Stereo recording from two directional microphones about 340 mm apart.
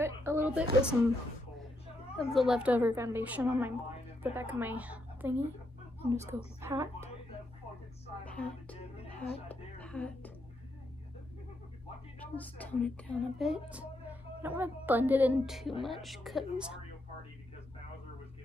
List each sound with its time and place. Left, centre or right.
0.0 s a woman's voice: centre
2.1 s a woman's voice: centre
8.3 s speech: centre
9.5 s music: centre
12.2 s a woman's voice: centre